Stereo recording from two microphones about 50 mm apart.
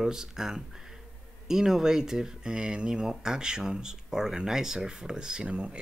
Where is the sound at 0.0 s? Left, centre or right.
Centre.